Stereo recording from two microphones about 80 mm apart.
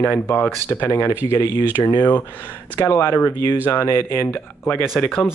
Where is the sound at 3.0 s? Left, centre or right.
Left.